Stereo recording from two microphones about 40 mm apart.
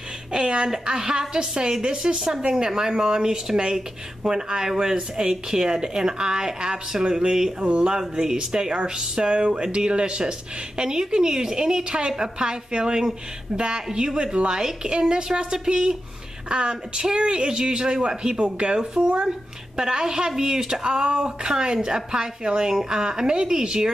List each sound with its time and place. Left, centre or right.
0.3 s a woman's voice: centre
7.6 s a man's voice: right
7.9 s a woman's voice: centre